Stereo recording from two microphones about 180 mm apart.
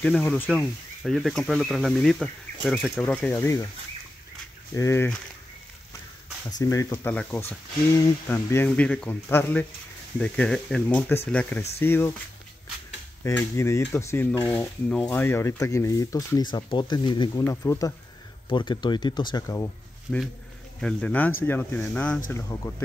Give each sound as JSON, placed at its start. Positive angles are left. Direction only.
{"t": 0.0, "sound": "speech", "side_deg": 5}
{"t": 4.7, "sound": "speech", "side_deg": 15}
{"t": 6.6, "sound": "speech", "side_deg": 15}
{"t": 13.2, "sound": "speech", "side_deg": 15}
{"t": 22.5, "sound": "speech", "side_deg": 15}